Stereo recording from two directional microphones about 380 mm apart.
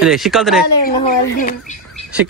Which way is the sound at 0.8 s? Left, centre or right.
Left.